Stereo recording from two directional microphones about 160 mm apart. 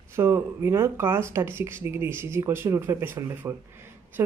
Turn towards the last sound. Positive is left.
turn(degrees=-15)  # may be behind; listen again after turning